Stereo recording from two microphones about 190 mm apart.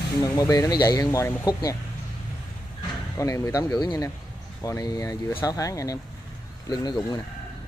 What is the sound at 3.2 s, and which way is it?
Speech, 15° left (ahead or behind).